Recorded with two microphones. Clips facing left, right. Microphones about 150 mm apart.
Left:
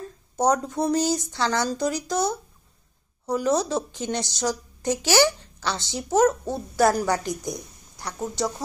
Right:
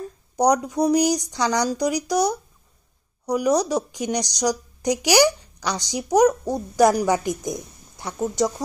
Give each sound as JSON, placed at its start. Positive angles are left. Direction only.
{"t": 0.4, "sound": "a woman's voice", "side_deg": -15}